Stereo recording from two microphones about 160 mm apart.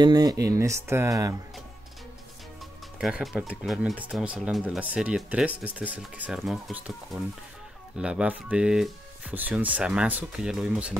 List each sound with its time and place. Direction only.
0.0 s speech: 25° right (ahead or behind)
3.0 s speech: 5° right (ahead or behind)
8.0 s speech: 5° right (ahead or behind)